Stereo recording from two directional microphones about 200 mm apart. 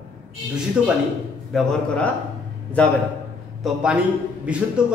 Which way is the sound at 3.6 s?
5° right (ahead or behind).